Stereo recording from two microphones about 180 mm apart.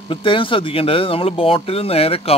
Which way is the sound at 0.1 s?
30° left (ahead or behind).